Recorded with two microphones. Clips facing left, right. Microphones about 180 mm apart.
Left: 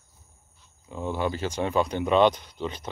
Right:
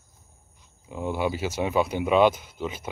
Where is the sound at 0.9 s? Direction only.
10° right (ahead or behind).